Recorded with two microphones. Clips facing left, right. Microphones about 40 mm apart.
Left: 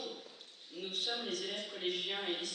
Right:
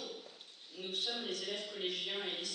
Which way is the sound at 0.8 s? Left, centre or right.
Left.